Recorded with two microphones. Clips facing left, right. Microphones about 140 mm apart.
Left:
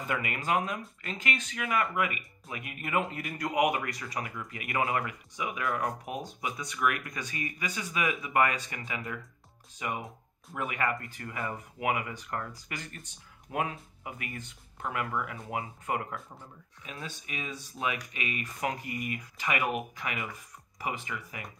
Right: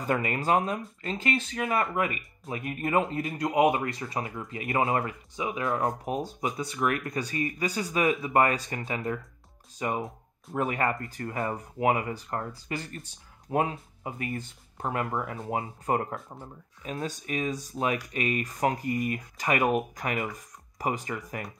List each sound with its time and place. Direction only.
0.0 s speech: 35° right (ahead or behind)